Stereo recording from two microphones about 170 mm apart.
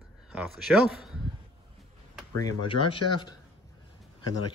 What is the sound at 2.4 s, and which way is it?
Speech, 25° left (ahead or behind).